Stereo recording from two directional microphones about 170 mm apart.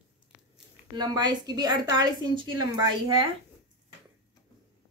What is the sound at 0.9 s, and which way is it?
A woman's voice, 25° right (ahead or behind).